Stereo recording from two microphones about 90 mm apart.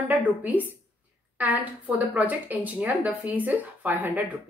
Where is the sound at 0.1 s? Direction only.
20° right (ahead or behind).